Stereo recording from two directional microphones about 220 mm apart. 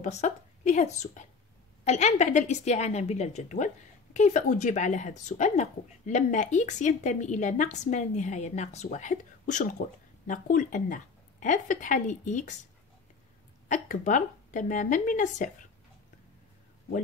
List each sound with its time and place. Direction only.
0.0 s a woman's voice: 30° left (ahead or behind)
13.7 s a woman's voice: 35° left (ahead or behind)